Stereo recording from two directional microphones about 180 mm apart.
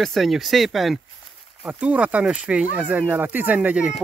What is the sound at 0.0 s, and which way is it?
Speech, centre (ahead or behind).